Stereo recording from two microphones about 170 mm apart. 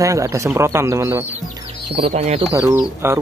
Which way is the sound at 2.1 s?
40° right (ahead or behind).